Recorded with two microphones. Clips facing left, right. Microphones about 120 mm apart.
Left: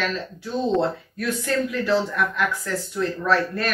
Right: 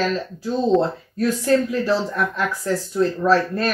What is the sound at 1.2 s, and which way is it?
Speech, 35° right (ahead or behind).